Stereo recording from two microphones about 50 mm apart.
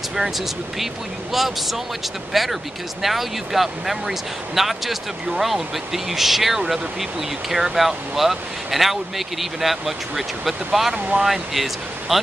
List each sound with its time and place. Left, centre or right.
1.3 s speech: centre